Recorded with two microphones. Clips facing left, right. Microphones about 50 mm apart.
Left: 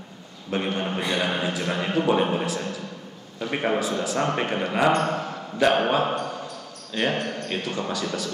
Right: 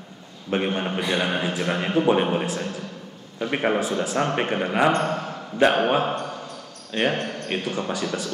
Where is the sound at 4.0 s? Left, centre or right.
Right.